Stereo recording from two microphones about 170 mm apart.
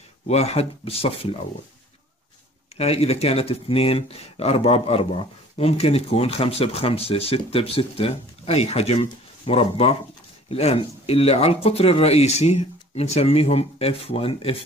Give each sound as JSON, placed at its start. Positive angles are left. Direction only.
{"t": 0.3, "sound": "speech", "side_deg": 35}
{"t": 2.8, "sound": "speech", "side_deg": 35}